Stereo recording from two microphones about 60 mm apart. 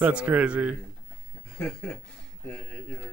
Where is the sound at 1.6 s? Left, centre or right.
Centre.